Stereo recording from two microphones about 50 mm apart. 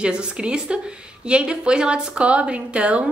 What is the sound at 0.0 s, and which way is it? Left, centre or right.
Speech, centre.